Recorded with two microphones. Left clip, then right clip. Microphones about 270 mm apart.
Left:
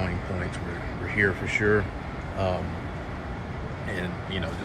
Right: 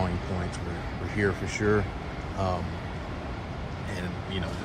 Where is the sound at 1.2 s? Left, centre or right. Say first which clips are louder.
Left 4 dB; centre.